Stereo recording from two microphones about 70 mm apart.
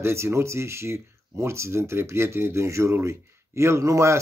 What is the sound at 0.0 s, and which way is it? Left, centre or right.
Speech, right.